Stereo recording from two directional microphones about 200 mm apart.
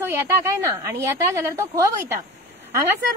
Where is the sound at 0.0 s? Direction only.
10° right (ahead or behind).